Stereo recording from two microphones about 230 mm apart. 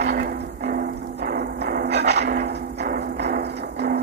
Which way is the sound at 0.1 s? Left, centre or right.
Right.